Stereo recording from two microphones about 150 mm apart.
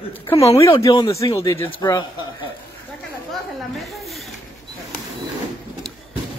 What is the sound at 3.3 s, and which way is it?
Snake, centre (ahead or behind).